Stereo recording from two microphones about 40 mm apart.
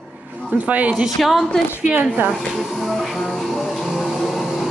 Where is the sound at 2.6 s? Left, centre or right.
Centre.